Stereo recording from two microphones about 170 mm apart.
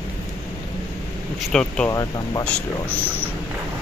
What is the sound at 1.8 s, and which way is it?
Speech, 20° left (ahead or behind).